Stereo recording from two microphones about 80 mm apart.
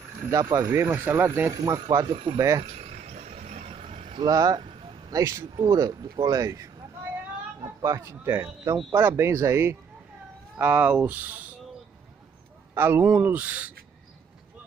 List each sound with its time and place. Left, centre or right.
0.3 s speech: right
0.7 s speech: right
1.6 s speech: right
4.3 s speech: right
8.3 s speech: right
10.6 s speech: centre
12.7 s speech: right